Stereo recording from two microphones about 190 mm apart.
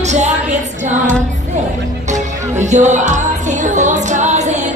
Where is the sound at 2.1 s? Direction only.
40° right (ahead or behind).